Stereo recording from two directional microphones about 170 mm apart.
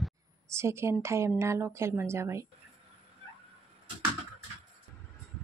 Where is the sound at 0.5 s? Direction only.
15° right (ahead or behind).